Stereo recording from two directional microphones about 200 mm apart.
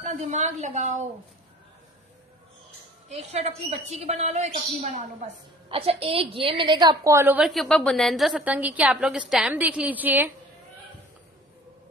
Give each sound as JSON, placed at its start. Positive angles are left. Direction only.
{"t": 0.0, "sound": "a woman's voice", "side_deg": -35}
{"t": 3.3, "sound": "a woman's voice", "side_deg": -30}